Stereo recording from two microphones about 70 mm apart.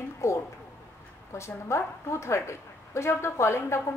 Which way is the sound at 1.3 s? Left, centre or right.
Left.